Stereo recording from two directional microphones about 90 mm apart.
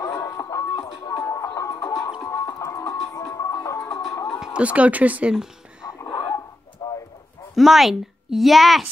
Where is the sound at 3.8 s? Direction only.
5° left (ahead or behind).